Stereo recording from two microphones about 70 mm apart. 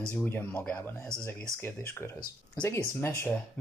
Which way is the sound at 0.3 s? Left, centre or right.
Left.